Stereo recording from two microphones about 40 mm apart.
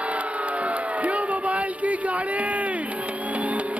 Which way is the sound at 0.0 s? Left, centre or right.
Right.